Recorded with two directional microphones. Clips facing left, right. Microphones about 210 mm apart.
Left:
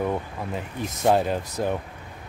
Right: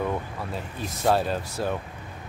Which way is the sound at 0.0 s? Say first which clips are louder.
Left 2 dB; 15° left (ahead or behind).